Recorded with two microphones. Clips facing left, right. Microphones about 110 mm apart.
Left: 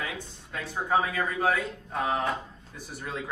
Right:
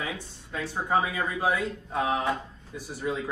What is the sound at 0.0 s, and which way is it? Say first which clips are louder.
Speech: right 1 dB; 15° right (ahead or behind).